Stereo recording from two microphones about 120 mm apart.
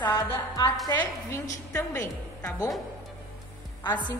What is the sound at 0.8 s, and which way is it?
Speech, 35° left (ahead or behind).